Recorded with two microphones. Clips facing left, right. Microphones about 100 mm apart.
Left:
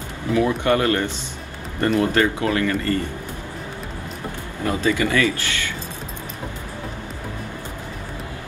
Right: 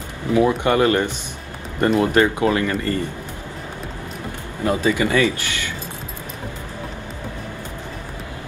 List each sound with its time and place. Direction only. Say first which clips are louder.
0.3 s speech: right 2 dB; 25° right (ahead or behind)
4.6 s speech: right 2 dB; 20° right (ahead or behind)